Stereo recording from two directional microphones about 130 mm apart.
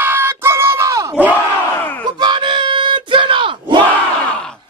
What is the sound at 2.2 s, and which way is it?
Battle cry, 35° right (ahead or behind).